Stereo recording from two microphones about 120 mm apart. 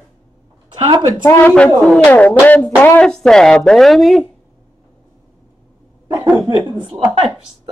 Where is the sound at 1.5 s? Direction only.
5° left (ahead or behind).